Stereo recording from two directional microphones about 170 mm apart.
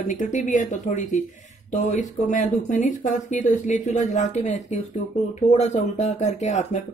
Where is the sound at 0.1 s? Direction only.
45° left (ahead or behind).